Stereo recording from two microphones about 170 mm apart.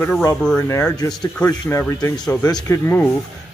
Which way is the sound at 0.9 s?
25° left (ahead or behind).